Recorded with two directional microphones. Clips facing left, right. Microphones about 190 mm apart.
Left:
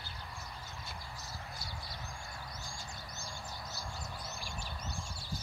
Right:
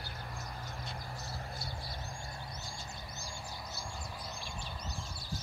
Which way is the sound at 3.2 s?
10° right (ahead or behind).